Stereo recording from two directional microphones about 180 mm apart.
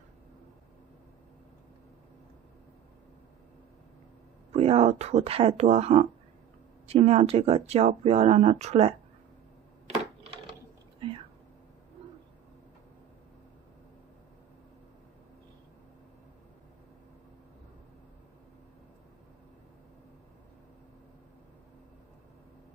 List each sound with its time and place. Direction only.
4.5 s speech: 35° right (ahead or behind)
11.0 s whispering: 30° right (ahead or behind)